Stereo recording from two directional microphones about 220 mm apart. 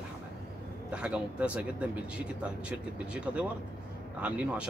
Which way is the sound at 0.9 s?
5° right (ahead or behind).